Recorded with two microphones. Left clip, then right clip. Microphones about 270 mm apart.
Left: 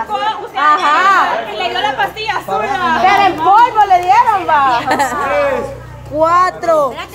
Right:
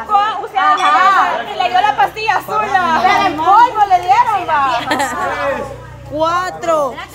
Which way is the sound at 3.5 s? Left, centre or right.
Left.